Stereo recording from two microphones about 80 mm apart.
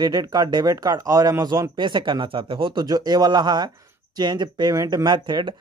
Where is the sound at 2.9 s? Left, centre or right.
Right.